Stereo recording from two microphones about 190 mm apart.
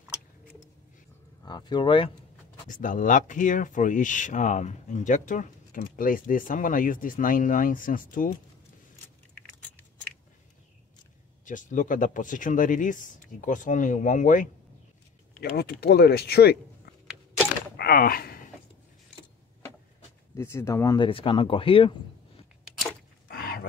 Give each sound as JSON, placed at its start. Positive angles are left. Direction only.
{"t": 1.4, "sound": "speech", "side_deg": 20}
{"t": 2.7, "sound": "speech", "side_deg": 45}
{"t": 11.4, "sound": "speech", "side_deg": 40}
{"t": 15.4, "sound": "speech", "side_deg": 60}
{"t": 17.7, "sound": "creak", "side_deg": 50}
{"t": 20.3, "sound": "speech", "side_deg": 15}
{"t": 23.2, "sound": "a sound", "side_deg": 55}